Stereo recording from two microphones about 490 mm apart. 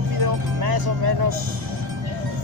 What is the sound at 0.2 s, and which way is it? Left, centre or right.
Music, right.